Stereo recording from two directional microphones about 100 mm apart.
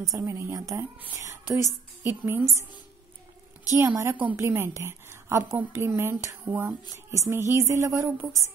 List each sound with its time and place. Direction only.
0.1 s a woman's voice: 30° right (ahead or behind)
3.7 s a woman's voice: 30° right (ahead or behind)